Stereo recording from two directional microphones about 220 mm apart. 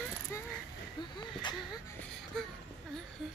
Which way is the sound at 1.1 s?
20° left (ahead or behind).